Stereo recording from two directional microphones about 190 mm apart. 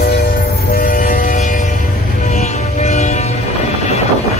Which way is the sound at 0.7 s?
50° left (ahead or behind).